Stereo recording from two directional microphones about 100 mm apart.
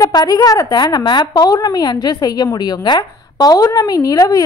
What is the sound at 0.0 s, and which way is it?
A woman's voice, 40° left (ahead or behind).